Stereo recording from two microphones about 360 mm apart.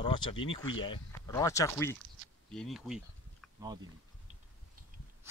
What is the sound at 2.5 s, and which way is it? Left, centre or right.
Insect, centre.